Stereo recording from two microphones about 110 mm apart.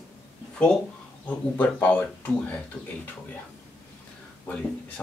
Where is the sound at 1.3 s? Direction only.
15° left (ahead or behind).